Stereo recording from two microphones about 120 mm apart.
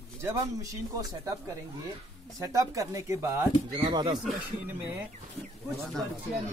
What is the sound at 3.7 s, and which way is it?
Speech, 40° right (ahead or behind).